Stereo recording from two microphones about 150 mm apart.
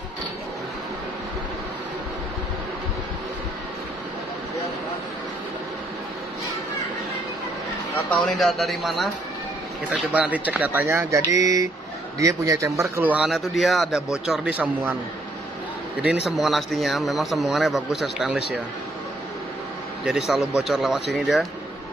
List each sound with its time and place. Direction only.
8.3 s speech: centre (ahead or behind)
10.1 s a man's voice: 10° right (ahead or behind)
16.0 s speech: 5° right (ahead or behind)
20.1 s speech: 5° right (ahead or behind)